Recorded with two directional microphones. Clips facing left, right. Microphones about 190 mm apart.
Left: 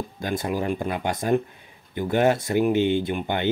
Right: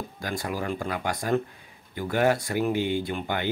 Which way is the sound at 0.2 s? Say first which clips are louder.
Left 5 dB; 20° left (ahead or behind).